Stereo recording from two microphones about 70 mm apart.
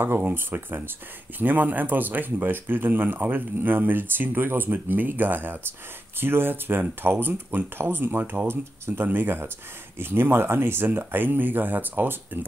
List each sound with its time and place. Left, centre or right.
0.0 s speech: right